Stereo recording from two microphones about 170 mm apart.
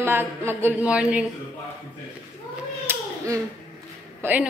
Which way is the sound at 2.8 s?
20° right (ahead or behind).